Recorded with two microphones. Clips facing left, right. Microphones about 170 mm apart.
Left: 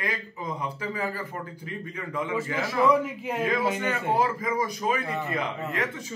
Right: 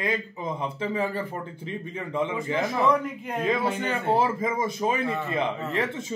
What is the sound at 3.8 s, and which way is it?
Speech, 30° right (ahead or behind).